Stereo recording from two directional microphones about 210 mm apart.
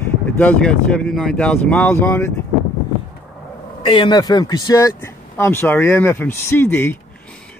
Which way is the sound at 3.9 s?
20° left (ahead or behind).